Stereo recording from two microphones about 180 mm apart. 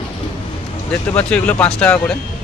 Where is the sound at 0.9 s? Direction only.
5° left (ahead or behind).